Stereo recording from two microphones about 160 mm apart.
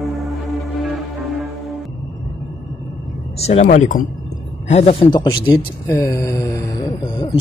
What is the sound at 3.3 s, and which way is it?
Speech, 40° left (ahead or behind).